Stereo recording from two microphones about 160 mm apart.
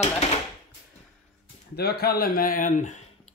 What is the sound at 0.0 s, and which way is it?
Speech, 40° left (ahead or behind).